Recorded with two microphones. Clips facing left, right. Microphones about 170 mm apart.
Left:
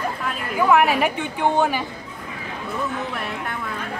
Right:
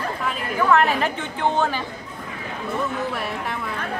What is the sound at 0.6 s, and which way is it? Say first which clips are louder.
A woman's voice: left 2 dB; 10° left (ahead or behind).